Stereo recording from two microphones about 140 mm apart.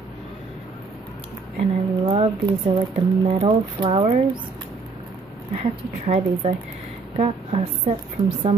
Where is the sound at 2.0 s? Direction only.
40° right (ahead or behind).